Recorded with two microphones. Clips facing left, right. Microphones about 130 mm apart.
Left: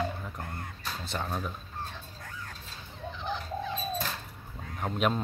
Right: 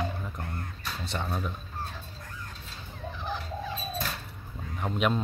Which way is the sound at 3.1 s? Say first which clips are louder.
Even; centre (ahead or behind).